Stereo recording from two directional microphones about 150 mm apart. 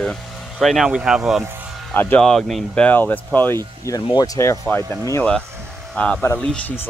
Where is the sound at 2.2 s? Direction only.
Centre (ahead or behind); by 4.6 s 20° left (ahead or behind).